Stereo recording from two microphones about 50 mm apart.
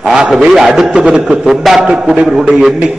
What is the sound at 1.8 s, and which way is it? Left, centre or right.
Speech, centre.